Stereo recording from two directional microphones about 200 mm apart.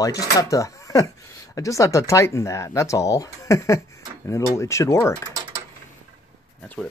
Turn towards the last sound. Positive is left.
turn(degrees=5)  # may be behind; listen again after turning